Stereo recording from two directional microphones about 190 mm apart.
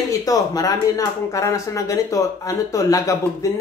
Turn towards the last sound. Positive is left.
turn(degrees=15)  # may be behind; listen again after turning